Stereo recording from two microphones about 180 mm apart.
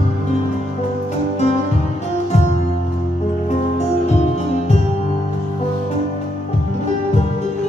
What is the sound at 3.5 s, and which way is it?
Music, 40° left (ahead or behind).